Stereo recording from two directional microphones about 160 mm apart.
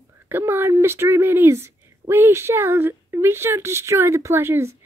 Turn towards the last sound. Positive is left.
turn(degrees=-15)  # may be behind; listen again after turning